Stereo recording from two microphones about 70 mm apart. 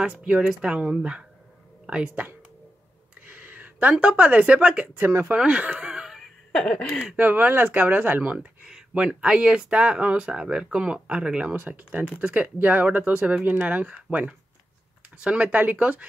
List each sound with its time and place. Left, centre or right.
0.0 s speech: centre
4.9 s speech: right
5.3 s speech: centre
7.2 s speech: right
8.6 s speech: centre